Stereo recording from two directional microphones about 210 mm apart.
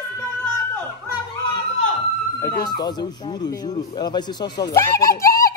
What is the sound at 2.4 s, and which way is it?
A woman's voice, 20° left (ahead or behind).